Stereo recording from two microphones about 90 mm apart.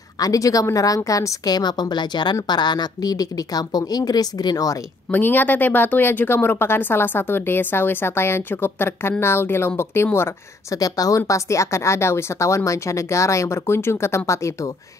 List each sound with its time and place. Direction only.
0.2 s a woman's voice: 40° left (ahead or behind)
5.1 s speech: 20° left (ahead or behind)
10.8 s speech: 40° left (ahead or behind)